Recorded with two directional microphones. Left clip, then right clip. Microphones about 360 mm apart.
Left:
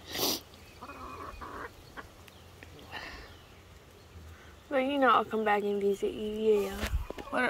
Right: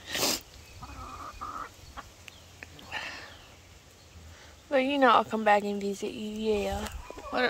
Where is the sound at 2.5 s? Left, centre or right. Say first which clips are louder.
Right 6 dB; centre.